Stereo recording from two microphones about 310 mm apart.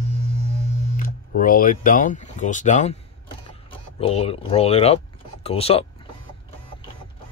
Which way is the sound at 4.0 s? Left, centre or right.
Centre.